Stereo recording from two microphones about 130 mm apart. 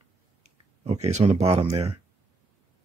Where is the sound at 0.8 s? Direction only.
55° right (ahead or behind).